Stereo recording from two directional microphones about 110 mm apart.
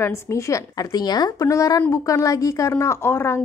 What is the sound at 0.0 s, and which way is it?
A woman's voice, 25° left (ahead or behind).